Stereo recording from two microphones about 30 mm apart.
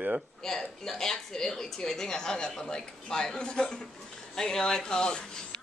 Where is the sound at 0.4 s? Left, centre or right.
Centre; by 3.8 s left.